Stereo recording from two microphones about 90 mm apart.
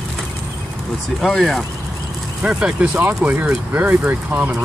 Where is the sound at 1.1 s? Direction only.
Centre (ahead or behind).